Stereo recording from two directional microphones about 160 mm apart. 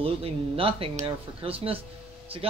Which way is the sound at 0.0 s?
35° right (ahead or behind).